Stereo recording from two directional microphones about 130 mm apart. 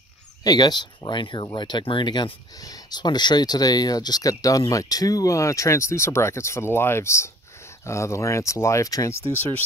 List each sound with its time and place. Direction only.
0.4 s speech: 30° left (ahead or behind)